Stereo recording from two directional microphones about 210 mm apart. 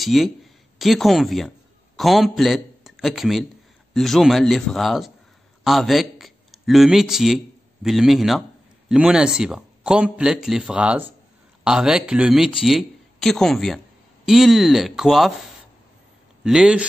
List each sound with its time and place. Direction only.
0.0 s a man's voice: centre (ahead or behind)
16.4 s a man's voice: 5° right (ahead or behind)